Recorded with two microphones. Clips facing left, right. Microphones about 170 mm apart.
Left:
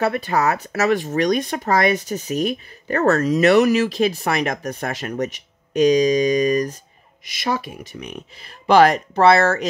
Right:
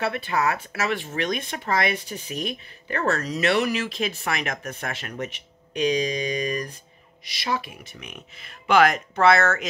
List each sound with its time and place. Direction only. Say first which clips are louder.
0.0 s speech: left 5 dB; 40° left (ahead or behind)